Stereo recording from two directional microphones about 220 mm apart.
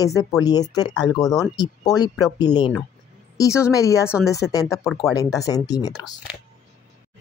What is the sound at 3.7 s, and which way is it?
Speech, 15° left (ahead or behind).